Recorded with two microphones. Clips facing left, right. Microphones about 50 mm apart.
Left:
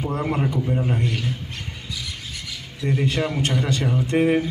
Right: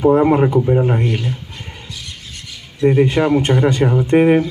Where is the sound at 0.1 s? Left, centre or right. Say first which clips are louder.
Right 12 dB; right.